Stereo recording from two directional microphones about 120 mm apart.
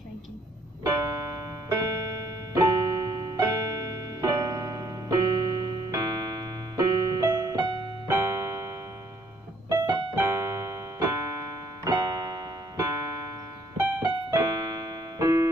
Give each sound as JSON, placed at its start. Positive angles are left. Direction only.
{"t": 0.8, "sound": "music", "side_deg": -30}
{"t": 9.7, "sound": "keyboard", "side_deg": -35}